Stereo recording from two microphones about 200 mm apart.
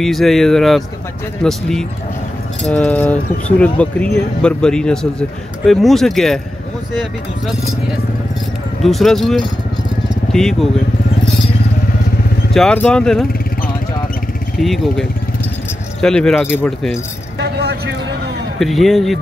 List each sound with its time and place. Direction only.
0.0 s speech: centre (ahead or behind)
8.8 s speech: centre (ahead or behind)
12.5 s speech: 5° left (ahead or behind)
14.6 s speech: centre (ahead or behind)
17.4 s vehicle: 55° right (ahead or behind)
18.6 s speech: centre (ahead or behind)